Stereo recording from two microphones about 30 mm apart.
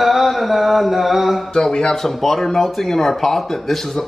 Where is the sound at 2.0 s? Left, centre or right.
Centre.